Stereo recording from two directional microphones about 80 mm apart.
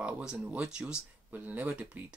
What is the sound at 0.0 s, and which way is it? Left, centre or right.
Speech, centre.